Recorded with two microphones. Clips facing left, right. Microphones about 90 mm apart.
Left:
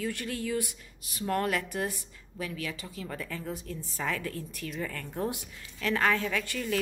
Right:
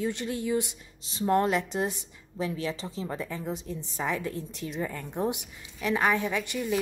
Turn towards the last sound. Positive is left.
turn(degrees=-20)  # may be behind; listen again after turning